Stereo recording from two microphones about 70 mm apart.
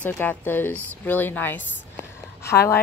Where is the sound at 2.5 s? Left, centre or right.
Left.